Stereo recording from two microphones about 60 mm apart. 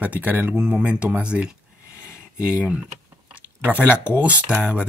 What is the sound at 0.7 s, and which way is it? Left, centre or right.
Speech, right.